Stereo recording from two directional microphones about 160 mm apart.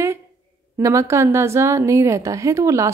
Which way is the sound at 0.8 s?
20° right (ahead or behind).